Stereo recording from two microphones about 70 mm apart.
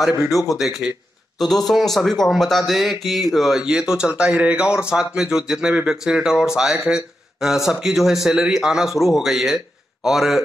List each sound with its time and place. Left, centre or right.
0.3 s speech: left
0.6 s speech: centre